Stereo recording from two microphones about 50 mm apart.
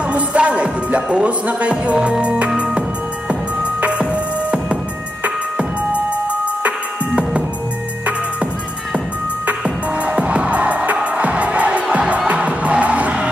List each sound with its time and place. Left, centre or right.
0.1 s music: right
4.0 s music: right
10.0 s music: right
11.1 s crowd: right
12.3 s music: right